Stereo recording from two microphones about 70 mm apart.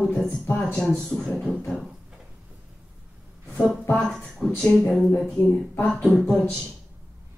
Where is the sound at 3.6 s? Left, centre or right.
Centre.